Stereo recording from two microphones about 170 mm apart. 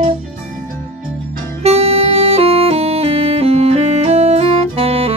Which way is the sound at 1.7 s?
35° right (ahead or behind).